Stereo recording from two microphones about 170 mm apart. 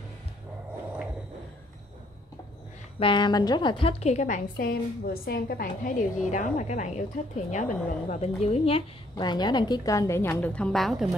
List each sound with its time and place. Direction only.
3.0 s a woman's voice: 30° left (ahead or behind); by 11.1 s centre (ahead or behind)